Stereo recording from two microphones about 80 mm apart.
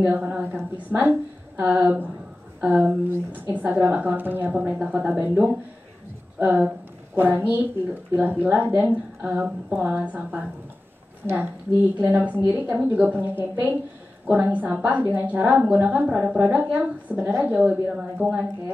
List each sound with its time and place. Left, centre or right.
0.0 s a woman's voice: centre
12.0 s a woman's voice: right